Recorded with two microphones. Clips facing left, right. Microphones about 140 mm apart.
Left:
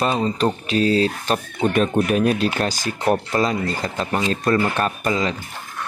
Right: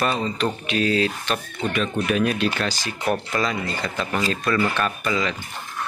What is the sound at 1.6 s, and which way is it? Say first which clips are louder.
Speech: left 7 dB; 45° left (ahead or behind).